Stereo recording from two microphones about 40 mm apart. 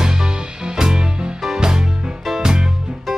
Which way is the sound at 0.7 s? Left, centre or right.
Centre.